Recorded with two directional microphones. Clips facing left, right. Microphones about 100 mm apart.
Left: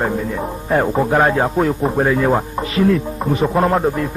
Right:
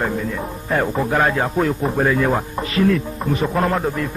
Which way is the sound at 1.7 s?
15° left (ahead or behind).